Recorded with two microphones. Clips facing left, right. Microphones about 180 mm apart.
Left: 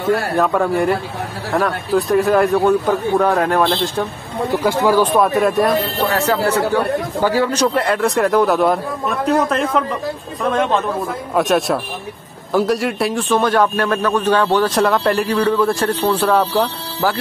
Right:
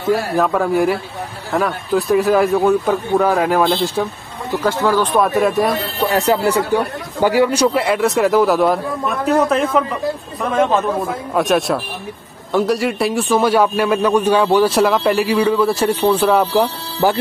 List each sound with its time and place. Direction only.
0.1 s a man's voice: centre (ahead or behind)
4.6 s speech: 10° left (ahead or behind)
5.1 s a man's voice: centre (ahead or behind)
5.9 s a man's voice: 15° right (ahead or behind)
11.3 s a man's voice: centre (ahead or behind); by 17.2 s 15° right (ahead or behind)